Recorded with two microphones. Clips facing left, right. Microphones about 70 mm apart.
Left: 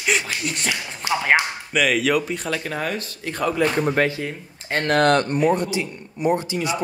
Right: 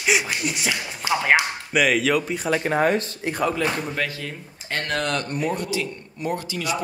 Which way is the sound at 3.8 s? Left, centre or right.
Left.